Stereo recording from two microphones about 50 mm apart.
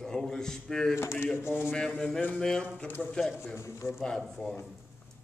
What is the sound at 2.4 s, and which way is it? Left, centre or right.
Speech, centre.